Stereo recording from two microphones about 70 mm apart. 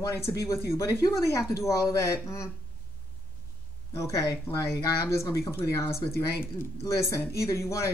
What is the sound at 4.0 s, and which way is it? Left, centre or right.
A woman's voice, left.